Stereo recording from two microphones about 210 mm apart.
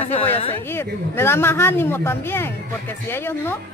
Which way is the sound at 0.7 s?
10° left (ahead or behind).